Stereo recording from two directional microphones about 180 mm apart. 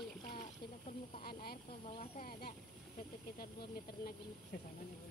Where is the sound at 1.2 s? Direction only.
55° left (ahead or behind).